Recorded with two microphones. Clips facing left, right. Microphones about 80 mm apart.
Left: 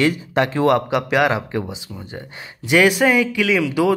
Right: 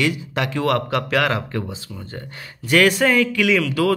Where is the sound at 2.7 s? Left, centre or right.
Centre.